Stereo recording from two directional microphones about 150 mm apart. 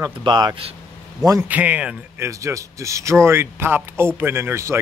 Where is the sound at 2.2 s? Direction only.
20° right (ahead or behind).